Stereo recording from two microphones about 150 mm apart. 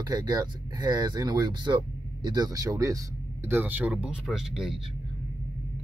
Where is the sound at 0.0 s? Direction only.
25° right (ahead or behind).